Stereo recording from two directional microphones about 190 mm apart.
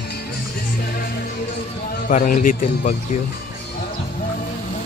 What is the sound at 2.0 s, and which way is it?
Speech, 45° left (ahead or behind).